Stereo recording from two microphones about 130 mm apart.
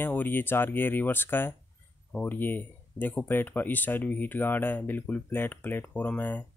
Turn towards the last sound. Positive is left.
turn(degrees=15)  # may be behind; listen again after turning